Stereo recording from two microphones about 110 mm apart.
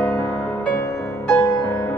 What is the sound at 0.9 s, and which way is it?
Music, 30° left (ahead or behind).